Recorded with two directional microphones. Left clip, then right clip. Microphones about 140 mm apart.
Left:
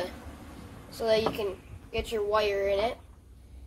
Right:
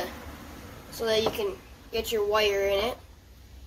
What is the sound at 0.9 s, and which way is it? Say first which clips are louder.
A woman's voice: even; 15° right (ahead or behind).